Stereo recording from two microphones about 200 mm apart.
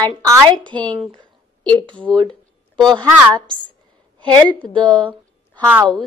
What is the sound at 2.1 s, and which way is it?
Speech, centre (ahead or behind).